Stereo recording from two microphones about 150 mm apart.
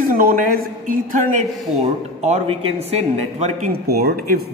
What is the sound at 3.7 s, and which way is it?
Speech, 90° right.